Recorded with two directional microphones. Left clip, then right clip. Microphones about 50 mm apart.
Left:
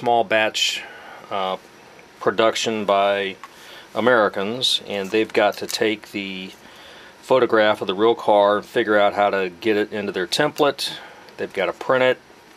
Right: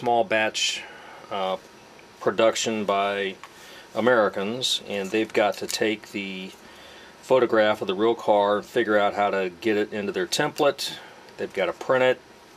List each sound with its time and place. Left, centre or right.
0.0 s speech: left